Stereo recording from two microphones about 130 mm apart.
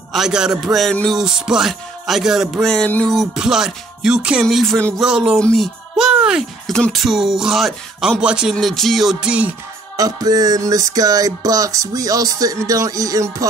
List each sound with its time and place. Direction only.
0.1 s speech: 5° right (ahead or behind)
3.2 s speech: 5° right (ahead or behind)
5.0 s speech: 5° right (ahead or behind)
9.9 s music: 30° right (ahead or behind)